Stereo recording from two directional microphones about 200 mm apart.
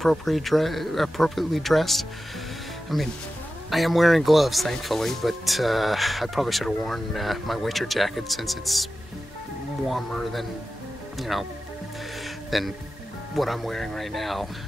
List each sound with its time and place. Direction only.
0.0 s speech: centre (ahead or behind)
9.8 s speech: centre (ahead or behind)
12.4 s speech: centre (ahead or behind)